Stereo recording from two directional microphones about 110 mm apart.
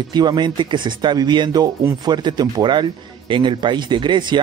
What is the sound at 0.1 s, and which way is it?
Speech, 40° right (ahead or behind).